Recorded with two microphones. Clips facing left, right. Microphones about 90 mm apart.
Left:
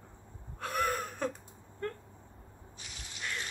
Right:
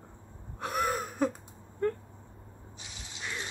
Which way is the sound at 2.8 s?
20° right (ahead or behind).